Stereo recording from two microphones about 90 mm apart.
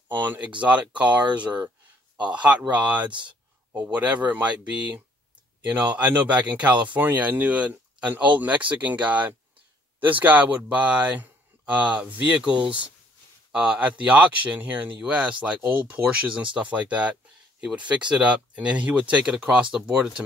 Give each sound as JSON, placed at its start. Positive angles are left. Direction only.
{"t": 0.3, "sound": "speech", "side_deg": -15}
{"t": 2.7, "sound": "speech", "side_deg": -15}
{"t": 3.1, "sound": "speech", "side_deg": -60}
{"t": 3.7, "sound": "speech", "side_deg": -15}